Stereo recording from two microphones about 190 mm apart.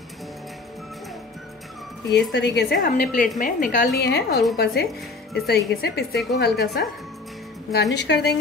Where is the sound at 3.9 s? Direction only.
60° left (ahead or behind).